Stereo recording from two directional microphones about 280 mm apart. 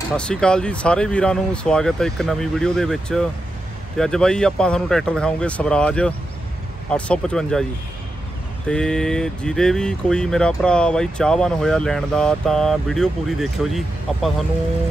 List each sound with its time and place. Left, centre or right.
0.1 s speech: centre
8.6 s speech: centre